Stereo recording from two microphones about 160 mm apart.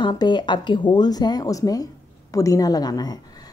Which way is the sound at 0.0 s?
25° left (ahead or behind).